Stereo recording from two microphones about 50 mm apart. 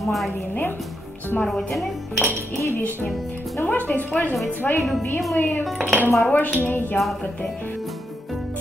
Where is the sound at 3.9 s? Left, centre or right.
Left.